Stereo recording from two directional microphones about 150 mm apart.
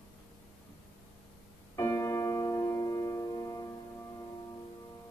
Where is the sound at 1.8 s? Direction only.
20° left (ahead or behind).